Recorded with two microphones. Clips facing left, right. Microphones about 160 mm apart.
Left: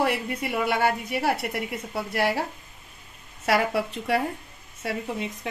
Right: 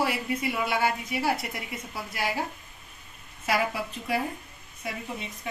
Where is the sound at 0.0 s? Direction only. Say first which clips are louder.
Left 2 dB; 60° left (ahead or behind).